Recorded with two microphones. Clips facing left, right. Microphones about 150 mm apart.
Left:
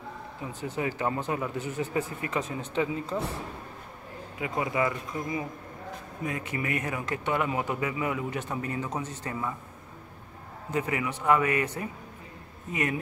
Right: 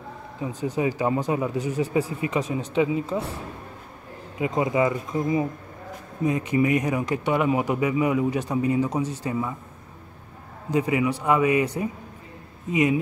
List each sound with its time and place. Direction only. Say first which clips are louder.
0.4 s speech: right 7 dB; 15° right (ahead or behind)
4.4 s speech: right 6 dB; 20° right (ahead or behind)
10.7 s speech: right 7 dB; 15° right (ahead or behind)